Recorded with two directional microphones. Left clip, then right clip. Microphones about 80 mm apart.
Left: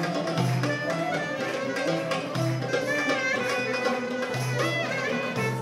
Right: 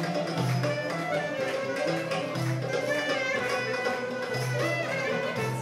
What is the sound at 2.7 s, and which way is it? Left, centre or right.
Music, left.